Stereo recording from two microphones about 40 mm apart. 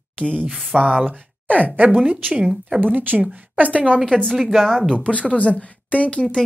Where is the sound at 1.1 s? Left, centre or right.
Right.